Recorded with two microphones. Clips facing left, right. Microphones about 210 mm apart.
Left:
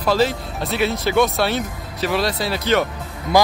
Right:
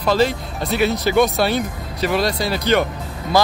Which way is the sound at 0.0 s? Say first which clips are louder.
Right 1 dB; 5° left (ahead or behind).